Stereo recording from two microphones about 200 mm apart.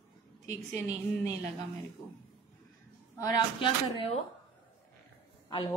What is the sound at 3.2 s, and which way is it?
Speech, 20° left (ahead or behind).